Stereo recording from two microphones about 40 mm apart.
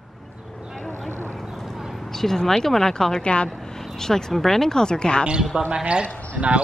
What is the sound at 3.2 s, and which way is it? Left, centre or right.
Speech, left.